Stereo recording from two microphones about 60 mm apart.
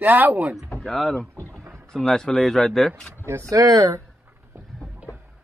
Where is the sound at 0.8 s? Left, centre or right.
Centre.